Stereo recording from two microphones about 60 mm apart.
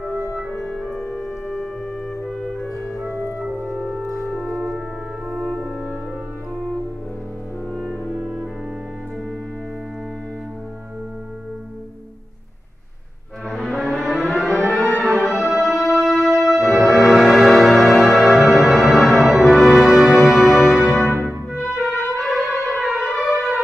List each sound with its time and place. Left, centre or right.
0.7 s music: centre
3.0 s music: right
4.3 s music: centre
5.3 s french horn: centre
13.6 s a sound: centre
15.1 s music: centre